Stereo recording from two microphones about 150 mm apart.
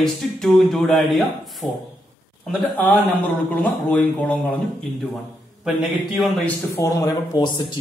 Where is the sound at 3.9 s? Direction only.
10° left (ahead or behind).